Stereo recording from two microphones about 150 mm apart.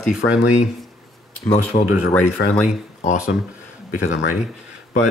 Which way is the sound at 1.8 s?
70° left (ahead or behind).